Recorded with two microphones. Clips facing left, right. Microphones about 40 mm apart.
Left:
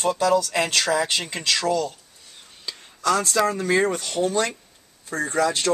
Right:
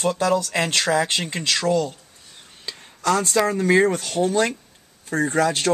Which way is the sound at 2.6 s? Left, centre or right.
Centre.